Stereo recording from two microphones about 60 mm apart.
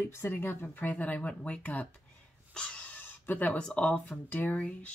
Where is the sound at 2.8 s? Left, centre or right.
Left.